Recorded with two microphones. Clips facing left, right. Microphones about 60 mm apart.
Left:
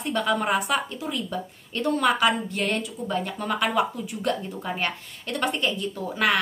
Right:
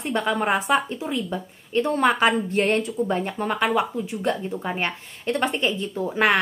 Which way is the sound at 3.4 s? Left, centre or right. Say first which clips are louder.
Right 1 dB; centre.